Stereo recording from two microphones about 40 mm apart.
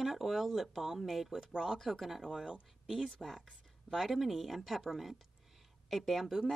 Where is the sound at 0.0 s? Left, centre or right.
Centre.